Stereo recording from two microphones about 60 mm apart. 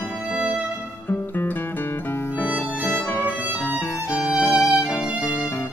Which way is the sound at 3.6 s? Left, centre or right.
Left.